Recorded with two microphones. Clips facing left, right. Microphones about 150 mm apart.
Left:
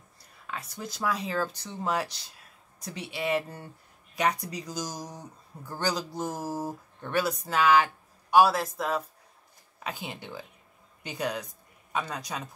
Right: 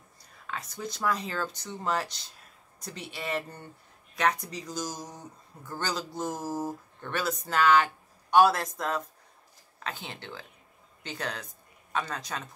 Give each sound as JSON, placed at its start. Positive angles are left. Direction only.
{"t": 0.5, "sound": "speech", "side_deg": 5}